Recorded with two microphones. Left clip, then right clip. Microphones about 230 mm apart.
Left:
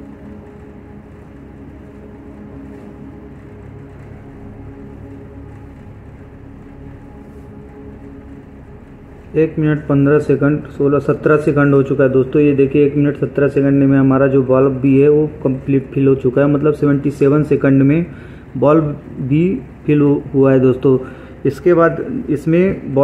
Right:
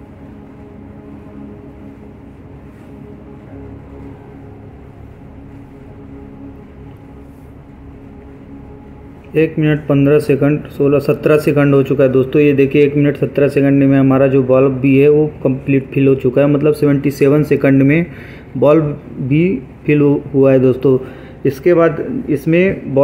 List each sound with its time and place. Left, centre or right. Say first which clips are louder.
9.3 s a man's voice: right 1 dB; centre
19.2 s a man's voice: right 1 dB; centre